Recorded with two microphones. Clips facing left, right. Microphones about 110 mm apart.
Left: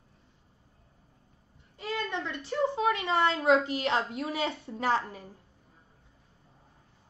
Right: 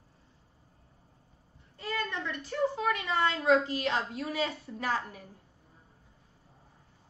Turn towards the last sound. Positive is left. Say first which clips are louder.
# left 4 dB
turn(degrees=25)  # may be behind; listen again after turning